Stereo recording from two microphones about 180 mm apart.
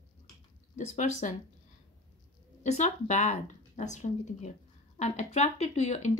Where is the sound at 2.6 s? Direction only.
40° left (ahead or behind).